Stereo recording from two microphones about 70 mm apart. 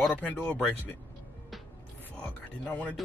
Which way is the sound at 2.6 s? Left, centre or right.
Left.